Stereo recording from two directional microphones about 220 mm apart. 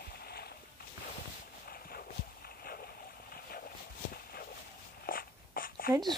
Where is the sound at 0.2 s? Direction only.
45° left (ahead or behind).